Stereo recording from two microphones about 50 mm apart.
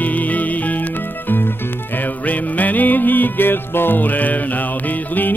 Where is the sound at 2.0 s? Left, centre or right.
Left.